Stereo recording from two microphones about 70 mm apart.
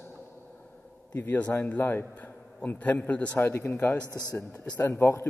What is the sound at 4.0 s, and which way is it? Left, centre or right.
Speech, right.